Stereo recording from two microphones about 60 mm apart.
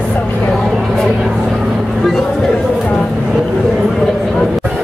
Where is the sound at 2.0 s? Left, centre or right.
Centre.